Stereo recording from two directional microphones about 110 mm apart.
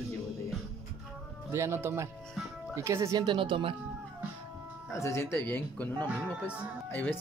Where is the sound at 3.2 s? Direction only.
50° right (ahead or behind).